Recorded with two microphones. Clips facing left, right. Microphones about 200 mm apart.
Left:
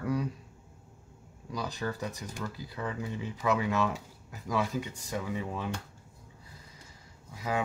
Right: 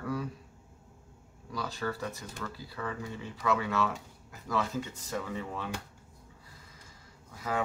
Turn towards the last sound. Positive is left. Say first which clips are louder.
# left 2 dB
turn(degrees=15)  # may be behind; listen again after turning